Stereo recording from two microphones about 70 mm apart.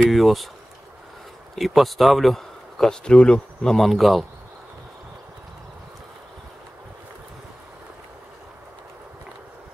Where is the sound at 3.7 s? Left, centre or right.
Centre.